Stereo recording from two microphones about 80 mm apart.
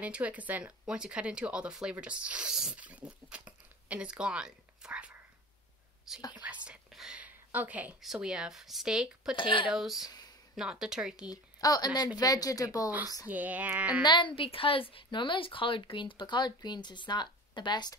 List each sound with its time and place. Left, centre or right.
0.0 s speech: centre
2.7 s a sound: centre
6.3 s speech: centre
6.9 s whispering: centre
7.2 s a sound: right
8.0 s speech: centre
9.4 s speech: left
9.7 s speech: centre
10.0 s a sound: left
10.5 s speech: centre
11.2 s a woman's voice: left
13.3 s speech: right
14.0 s a woman's voice: left